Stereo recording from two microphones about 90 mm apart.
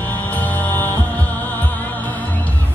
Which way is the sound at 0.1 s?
20° left (ahead or behind).